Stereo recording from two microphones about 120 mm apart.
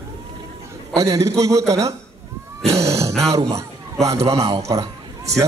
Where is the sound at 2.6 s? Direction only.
25° right (ahead or behind).